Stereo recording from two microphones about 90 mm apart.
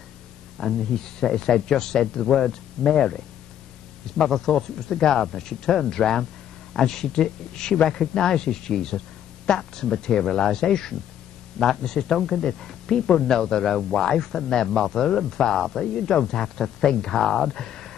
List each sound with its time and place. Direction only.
0.6 s speech: 5° left (ahead or behind)